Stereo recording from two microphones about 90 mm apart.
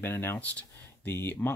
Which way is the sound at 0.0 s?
25° left (ahead or behind).